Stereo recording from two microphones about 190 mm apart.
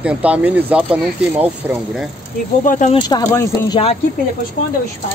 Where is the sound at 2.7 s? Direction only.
40° left (ahead or behind).